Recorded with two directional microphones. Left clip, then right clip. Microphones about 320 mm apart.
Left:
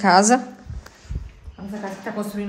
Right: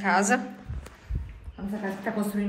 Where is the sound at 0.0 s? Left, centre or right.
Centre.